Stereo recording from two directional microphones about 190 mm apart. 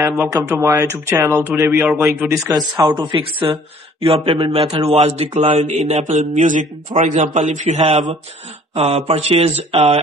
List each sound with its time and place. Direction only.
0.0 s speech: 10° right (ahead or behind)
4.0 s mantra: 30° right (ahead or behind)